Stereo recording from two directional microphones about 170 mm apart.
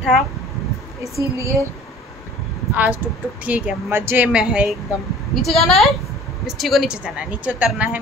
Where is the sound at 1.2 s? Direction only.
15° right (ahead or behind).